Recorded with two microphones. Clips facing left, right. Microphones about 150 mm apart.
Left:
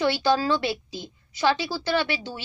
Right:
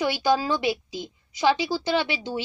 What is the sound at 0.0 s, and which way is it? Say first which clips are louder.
A woman's voice: left 1 dB; 15° right (ahead or behind).